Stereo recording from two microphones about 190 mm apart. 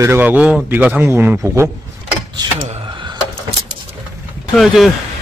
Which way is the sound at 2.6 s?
30° right (ahead or behind).